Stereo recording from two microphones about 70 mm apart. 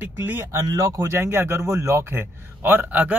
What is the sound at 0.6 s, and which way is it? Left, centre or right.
Speech, right.